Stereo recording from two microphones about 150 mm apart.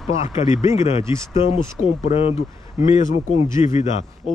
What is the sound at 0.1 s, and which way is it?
Speech, 40° left (ahead or behind).